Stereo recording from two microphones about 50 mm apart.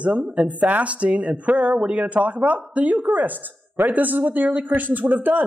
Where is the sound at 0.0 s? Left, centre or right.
Right.